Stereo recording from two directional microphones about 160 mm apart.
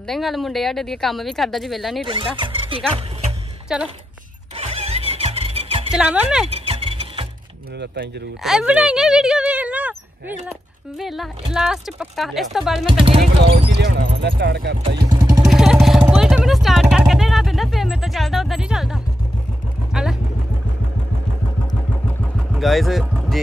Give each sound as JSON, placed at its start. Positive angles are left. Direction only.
{"t": 0.0, "sound": "speech", "side_deg": 0}
{"t": 2.0, "sound": "speech", "side_deg": -30}
{"t": 2.9, "sound": "music", "side_deg": -40}
{"t": 3.6, "sound": "speech", "side_deg": -5}
{"t": 4.6, "sound": "music", "side_deg": -40}
{"t": 5.9, "sound": "speech", "side_deg": -5}
{"t": 6.5, "sound": "a sound", "side_deg": -40}
{"t": 7.8, "sound": "speech", "side_deg": -90}
{"t": 8.4, "sound": "speech", "side_deg": -5}
{"t": 13.7, "sound": "speech", "side_deg": -90}
{"t": 15.0, "sound": "vehicle", "side_deg": -25}
{"t": 15.4, "sound": "vehicle", "side_deg": 0}
{"t": 22.5, "sound": "speech", "side_deg": 0}